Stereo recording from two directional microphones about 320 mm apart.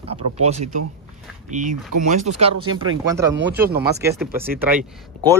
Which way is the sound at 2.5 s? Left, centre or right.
Right.